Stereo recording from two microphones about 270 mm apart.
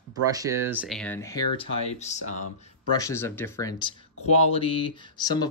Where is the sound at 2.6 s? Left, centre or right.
Centre.